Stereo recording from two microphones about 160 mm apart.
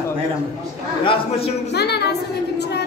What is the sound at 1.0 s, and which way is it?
Speech, 35° left (ahead or behind).